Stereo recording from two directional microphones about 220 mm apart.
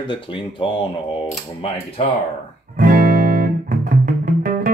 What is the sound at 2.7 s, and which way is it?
Music, 40° right (ahead or behind).